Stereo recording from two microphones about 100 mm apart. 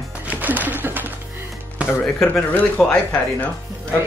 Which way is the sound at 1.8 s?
20° left (ahead or behind).